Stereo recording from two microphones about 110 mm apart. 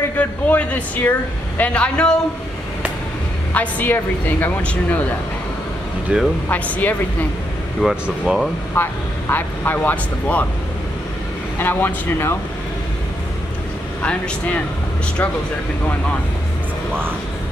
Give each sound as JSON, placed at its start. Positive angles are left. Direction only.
{"t": 0.2, "sound": "speech", "side_deg": 15}
{"t": 3.5, "sound": "speech", "side_deg": 15}
{"t": 6.1, "sound": "speech", "side_deg": -10}
{"t": 6.5, "sound": "speech", "side_deg": 15}
{"t": 7.9, "sound": "speech", "side_deg": -5}
{"t": 8.8, "sound": "speech", "side_deg": 20}
{"t": 11.5, "sound": "speech", "side_deg": 20}